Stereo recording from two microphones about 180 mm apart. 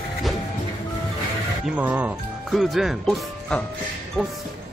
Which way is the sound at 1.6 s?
10° right (ahead or behind).